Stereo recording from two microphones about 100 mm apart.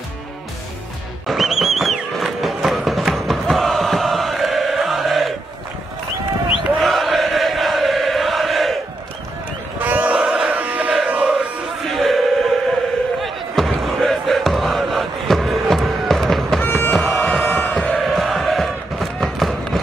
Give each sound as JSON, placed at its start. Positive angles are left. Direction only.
{"t": 1.2, "sound": "a sound", "side_deg": 0}
{"t": 6.5, "sound": "chant", "side_deg": 0}
{"t": 9.8, "sound": "chant", "side_deg": -15}
{"t": 11.9, "sound": "music", "side_deg": 0}
{"t": 13.2, "sound": "crowd", "side_deg": 0}
{"t": 16.9, "sound": "music", "side_deg": 0}
{"t": 17.7, "sound": "chant", "side_deg": 0}